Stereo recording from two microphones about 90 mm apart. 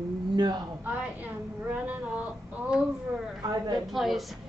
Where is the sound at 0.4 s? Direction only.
50° right (ahead or behind).